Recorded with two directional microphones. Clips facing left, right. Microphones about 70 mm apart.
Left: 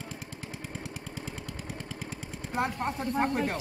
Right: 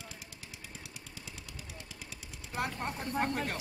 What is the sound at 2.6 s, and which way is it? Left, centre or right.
Speech, left.